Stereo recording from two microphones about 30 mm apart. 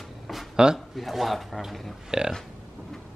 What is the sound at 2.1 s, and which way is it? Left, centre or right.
Speech, right.